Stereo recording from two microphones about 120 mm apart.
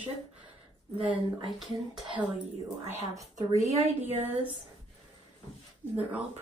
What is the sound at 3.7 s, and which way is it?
Speech, 60° right (ahead or behind).